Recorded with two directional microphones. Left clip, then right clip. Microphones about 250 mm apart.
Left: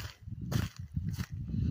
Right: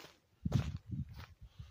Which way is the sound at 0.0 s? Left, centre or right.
Left.